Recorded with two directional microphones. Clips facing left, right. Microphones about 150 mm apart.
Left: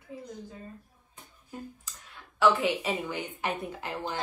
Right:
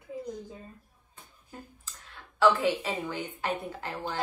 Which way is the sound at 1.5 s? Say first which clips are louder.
Left 5 dB; 15° left (ahead or behind).